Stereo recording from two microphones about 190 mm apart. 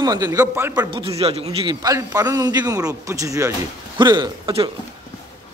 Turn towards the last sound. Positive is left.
turn(degrees=-25)  # may be behind; listen again after turning